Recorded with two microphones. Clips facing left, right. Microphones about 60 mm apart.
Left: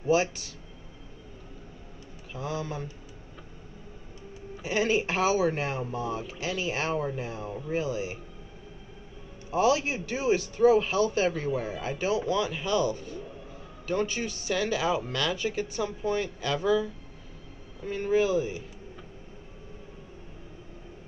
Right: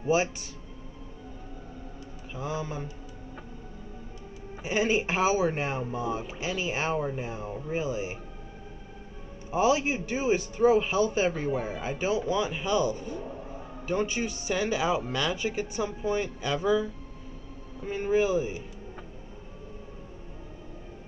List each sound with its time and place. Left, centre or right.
0.0 s speech: centre
2.3 s speech: centre
4.6 s speech: centre
9.5 s speech: centre
11.5 s speech: right
11.8 s speech: centre
13.2 s a sound: right
13.8 s speech: centre